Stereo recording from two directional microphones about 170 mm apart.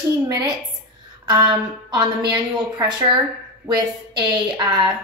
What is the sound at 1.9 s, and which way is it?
A woman's voice, 25° right (ahead or behind).